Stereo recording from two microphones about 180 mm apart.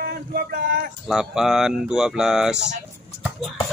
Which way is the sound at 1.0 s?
Centre (ahead or behind).